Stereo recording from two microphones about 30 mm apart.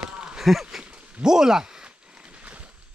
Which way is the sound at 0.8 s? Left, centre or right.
Right.